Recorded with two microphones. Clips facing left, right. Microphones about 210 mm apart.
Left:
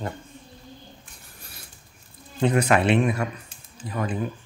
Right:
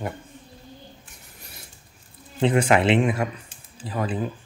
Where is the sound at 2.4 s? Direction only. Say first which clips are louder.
Right 1 dB; 25° right (ahead or behind).